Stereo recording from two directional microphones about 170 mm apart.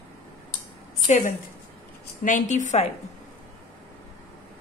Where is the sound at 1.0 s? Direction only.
45° left (ahead or behind).